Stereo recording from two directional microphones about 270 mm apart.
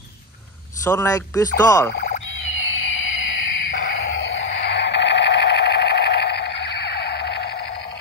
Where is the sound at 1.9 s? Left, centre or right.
Left.